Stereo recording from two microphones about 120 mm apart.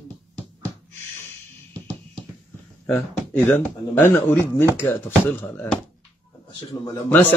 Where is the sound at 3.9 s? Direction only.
15° left (ahead or behind).